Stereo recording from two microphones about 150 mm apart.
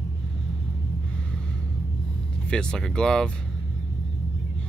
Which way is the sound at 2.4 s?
5° left (ahead or behind).